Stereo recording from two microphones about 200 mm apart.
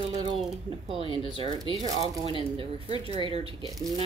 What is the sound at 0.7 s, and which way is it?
Speech, 30° right (ahead or behind).